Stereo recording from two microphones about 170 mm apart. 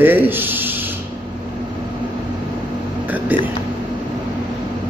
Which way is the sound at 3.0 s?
10° right (ahead or behind).